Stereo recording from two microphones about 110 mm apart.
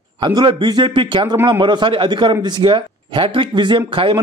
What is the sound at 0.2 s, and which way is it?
A man's voice, 45° right (ahead or behind).